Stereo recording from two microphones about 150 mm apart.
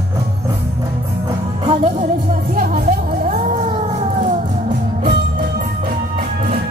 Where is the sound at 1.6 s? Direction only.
50° right (ahead or behind).